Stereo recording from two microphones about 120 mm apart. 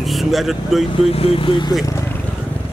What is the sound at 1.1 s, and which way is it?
Speech, 55° left (ahead or behind).